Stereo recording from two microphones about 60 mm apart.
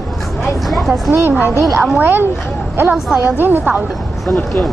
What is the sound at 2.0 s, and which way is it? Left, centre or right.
Speech, right.